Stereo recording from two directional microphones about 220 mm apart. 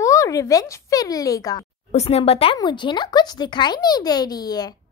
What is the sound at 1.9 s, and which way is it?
Speech, 30° left (ahead or behind).